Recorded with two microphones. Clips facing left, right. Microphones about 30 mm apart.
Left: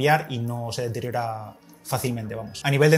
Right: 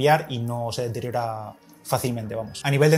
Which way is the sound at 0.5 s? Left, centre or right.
Centre.